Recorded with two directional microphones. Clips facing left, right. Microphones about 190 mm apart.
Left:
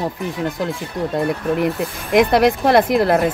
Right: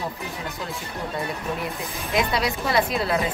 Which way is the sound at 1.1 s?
60° left (ahead or behind).